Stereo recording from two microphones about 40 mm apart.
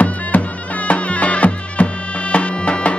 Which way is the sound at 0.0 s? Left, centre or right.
Left.